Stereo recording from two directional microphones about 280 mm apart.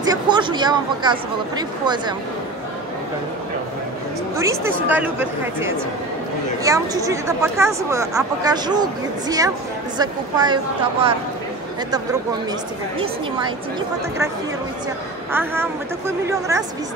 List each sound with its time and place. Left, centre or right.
0.0 s speech: centre
4.4 s speech: centre
6.6 s speech: centre
9.9 s speech: centre
13.4 s speech: centre
15.3 s speech: centre